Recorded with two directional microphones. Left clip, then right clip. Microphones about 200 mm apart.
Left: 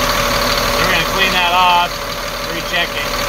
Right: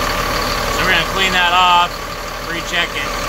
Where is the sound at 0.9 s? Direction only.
Centre (ahead or behind).